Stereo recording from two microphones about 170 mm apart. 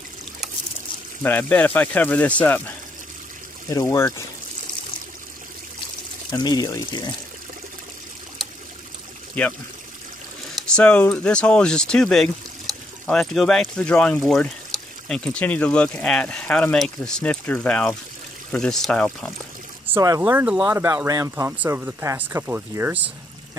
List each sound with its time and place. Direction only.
1.2 s speech: 10° left (ahead or behind)
3.7 s speech: 15° left (ahead or behind)
6.3 s speech: 25° left (ahead or behind)
9.4 s speech: 5° left (ahead or behind)
19.9 s speech: 15° right (ahead or behind)